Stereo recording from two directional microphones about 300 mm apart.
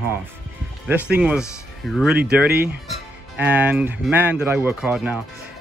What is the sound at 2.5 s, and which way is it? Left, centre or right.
Speech, right.